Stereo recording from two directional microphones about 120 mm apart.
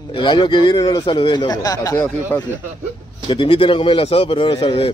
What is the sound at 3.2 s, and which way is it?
Speech, 45° left (ahead or behind).